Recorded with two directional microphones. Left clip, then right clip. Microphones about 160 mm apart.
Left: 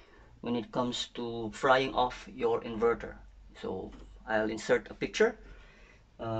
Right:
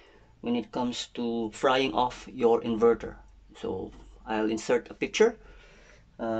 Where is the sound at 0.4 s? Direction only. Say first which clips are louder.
Right 2 dB; 10° right (ahead or behind).